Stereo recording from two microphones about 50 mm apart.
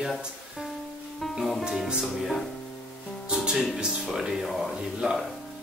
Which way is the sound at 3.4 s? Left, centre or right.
Centre.